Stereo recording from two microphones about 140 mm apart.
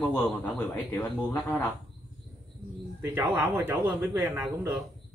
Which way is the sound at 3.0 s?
15° right (ahead or behind).